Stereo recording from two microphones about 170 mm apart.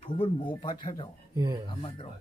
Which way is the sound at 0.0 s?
30° left (ahead or behind).